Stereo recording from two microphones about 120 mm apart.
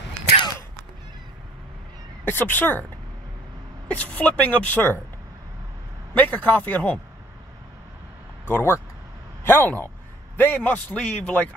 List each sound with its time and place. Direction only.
2.2 s a man's voice: 15° left (ahead or behind)
3.9 s a man's voice: 10° left (ahead or behind)
6.1 s a man's voice: 15° left (ahead or behind)
8.5 s a man's voice: 20° left (ahead or behind)